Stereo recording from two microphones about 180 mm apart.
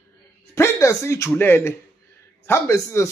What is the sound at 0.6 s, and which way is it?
A man's voice, 15° left (ahead or behind).